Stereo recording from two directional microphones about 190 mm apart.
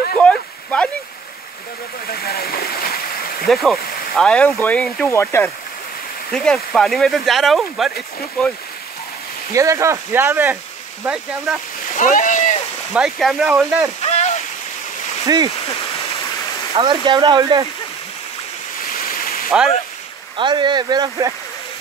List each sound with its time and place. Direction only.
0.2 s a sound: 5° left (ahead or behind)
2.0 s stream: 55° left (ahead or behind)
3.4 s speech: centre (ahead or behind)
9.5 s speech: 15° right (ahead or behind)
11.5 s speech: centre (ahead or behind)
12.0 s rowboat: 40° left (ahead or behind)
12.9 s speech: centre (ahead or behind)
14.0 s waterfall: 35° left (ahead or behind)
15.2 s speech: 20° right (ahead or behind)
16.7 s speech: 25° right (ahead or behind)
19.0 s a sound: 50° left (ahead or behind)
20.3 s speech: 25° right (ahead or behind)